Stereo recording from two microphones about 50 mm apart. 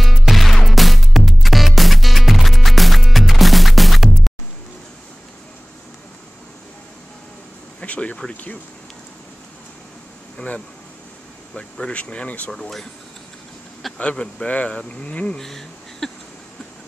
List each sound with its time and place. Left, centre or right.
0.0 s music: centre
7.8 s a sound: left
8.3 s speech: left
10.3 s speech: left
12.4 s speech: centre
13.9 s speech: centre
14.5 s speech: left
15.3 s speech: centre